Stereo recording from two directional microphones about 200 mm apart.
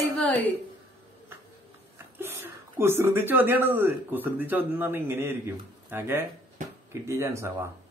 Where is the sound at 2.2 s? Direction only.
10° right (ahead or behind).